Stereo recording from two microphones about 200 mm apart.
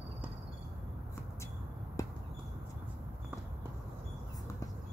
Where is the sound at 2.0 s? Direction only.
15° left (ahead or behind).